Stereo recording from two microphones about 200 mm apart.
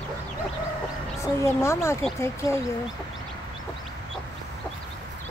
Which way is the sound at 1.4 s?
15° left (ahead or behind).